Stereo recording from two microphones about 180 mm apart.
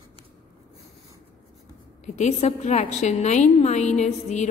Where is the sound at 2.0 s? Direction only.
40° left (ahead or behind).